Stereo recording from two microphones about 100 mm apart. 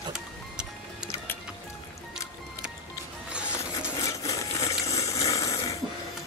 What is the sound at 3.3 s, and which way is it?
Music, 10° right (ahead or behind).